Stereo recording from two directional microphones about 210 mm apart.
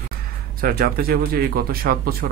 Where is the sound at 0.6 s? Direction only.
45° right (ahead or behind).